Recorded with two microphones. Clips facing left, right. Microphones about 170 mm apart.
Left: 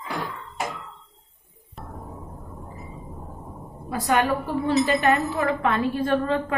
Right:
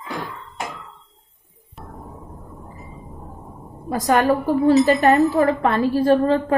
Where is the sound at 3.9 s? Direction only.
40° right (ahead or behind).